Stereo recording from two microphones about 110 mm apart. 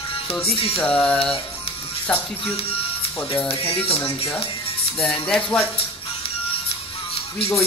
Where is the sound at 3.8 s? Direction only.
60° left (ahead or behind).